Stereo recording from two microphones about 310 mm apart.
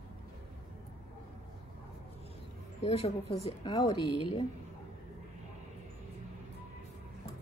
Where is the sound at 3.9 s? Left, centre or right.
Left.